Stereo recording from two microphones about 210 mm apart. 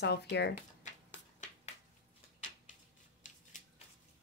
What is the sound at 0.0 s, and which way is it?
Speech, 50° left (ahead or behind).